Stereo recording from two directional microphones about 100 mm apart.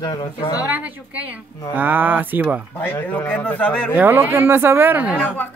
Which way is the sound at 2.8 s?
20° left (ahead or behind).